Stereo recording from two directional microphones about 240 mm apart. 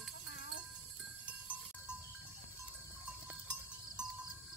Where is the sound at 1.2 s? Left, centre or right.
Centre.